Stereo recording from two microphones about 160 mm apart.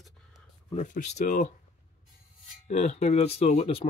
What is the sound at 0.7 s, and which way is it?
Speech, 50° left (ahead or behind).